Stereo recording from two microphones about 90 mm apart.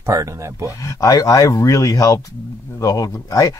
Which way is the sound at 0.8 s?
40° left (ahead or behind).